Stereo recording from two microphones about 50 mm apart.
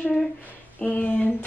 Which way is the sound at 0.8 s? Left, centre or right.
Left.